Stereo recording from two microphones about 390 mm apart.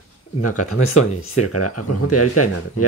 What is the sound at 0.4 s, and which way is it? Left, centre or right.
Speech, left.